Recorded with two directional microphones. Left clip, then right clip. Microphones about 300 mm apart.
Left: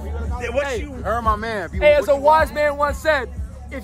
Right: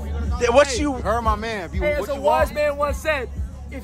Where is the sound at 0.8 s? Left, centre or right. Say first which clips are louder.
Right 2 dB; centre.